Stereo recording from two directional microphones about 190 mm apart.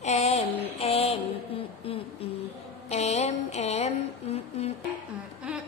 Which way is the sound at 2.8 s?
35° left (ahead or behind).